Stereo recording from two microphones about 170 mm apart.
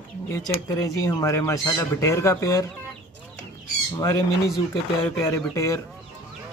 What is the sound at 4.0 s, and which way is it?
Speech, 15° left (ahead or behind).